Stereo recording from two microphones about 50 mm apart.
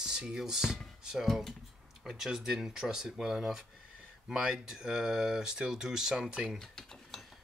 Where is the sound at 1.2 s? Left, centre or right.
Centre.